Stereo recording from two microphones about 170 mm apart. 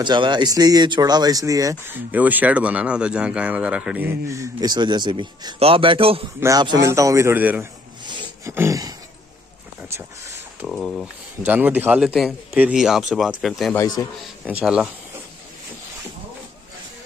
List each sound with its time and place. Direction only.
0.0 s speech: 25° right (ahead or behind)
6.4 s speech: 20° right (ahead or behind)
8.0 s roaring cats: 25° right (ahead or behind)
8.5 s speech: 20° right (ahead or behind)
10.7 s speech: centre (ahead or behind)
11.4 s speech: 10° right (ahead or behind)
13.7 s a man's voice: 20° left (ahead or behind)
14.4 s speech: 5° right (ahead or behind)